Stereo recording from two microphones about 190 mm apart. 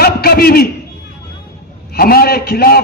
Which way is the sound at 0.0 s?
55° left (ahead or behind).